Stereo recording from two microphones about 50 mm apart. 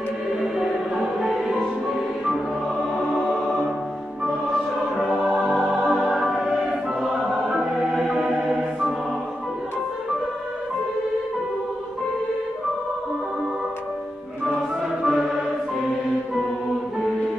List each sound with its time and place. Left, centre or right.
0.6 s music: centre
3.2 s music: centre
5.3 s music: centre
5.9 s music: centre
15.0 s music: centre